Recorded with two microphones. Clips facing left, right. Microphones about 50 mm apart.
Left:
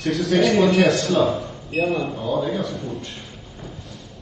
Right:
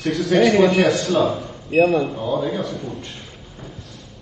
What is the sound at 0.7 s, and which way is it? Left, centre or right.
Speech, centre.